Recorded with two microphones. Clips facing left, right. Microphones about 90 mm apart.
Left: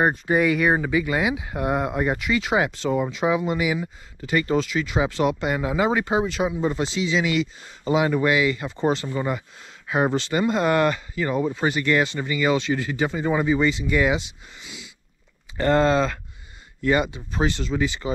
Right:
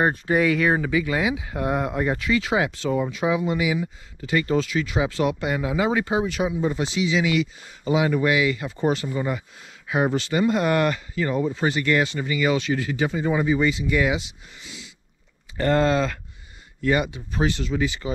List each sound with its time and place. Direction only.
0.1 s speech: 20° left (ahead or behind)
13.1 s speech: 50° left (ahead or behind)
13.8 s speech: 30° left (ahead or behind)
14.6 s a sound: 20° left (ahead or behind)
15.5 s speech: 20° left (ahead or behind)